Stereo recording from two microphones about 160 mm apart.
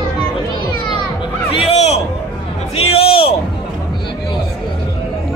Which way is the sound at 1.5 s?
40° left (ahead or behind).